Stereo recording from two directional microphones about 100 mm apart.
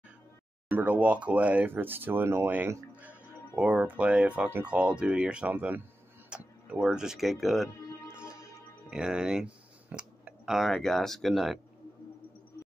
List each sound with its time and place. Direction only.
0.7 s speech: 15° right (ahead or behind)
8.9 s speech: 5° right (ahead or behind)